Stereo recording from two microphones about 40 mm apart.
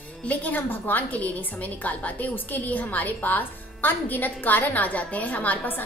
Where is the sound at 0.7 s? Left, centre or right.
Left.